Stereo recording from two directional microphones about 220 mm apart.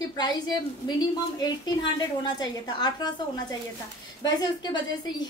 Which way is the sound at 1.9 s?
20° left (ahead or behind).